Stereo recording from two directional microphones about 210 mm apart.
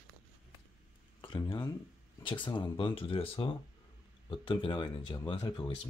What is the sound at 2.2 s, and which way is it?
Speech, 25° left (ahead or behind).